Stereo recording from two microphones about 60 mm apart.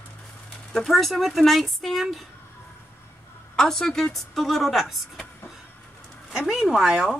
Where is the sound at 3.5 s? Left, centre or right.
Centre.